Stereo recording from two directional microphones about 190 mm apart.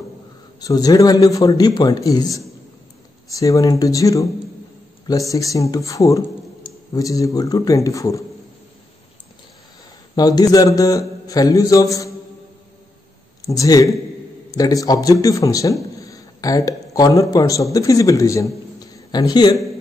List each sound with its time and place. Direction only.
0.6 s a man's voice: 20° left (ahead or behind)
5.3 s speech: 15° left (ahead or behind)
10.1 s a man's voice: 20° left (ahead or behind)
13.4 s a man's voice: 20° left (ahead or behind)